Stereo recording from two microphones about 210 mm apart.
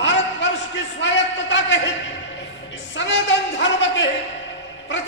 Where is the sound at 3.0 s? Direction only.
60° left (ahead or behind).